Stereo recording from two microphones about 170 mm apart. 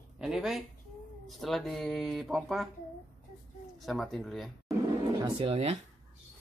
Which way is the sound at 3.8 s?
Centre (ahead or behind).